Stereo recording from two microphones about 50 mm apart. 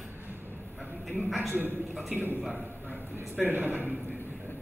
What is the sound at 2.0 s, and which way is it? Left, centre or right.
Speech, centre.